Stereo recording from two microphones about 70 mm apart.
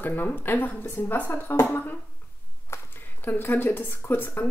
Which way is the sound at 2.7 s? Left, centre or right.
Left.